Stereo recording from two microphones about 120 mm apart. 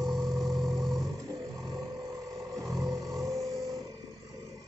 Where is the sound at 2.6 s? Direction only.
30° right (ahead or behind).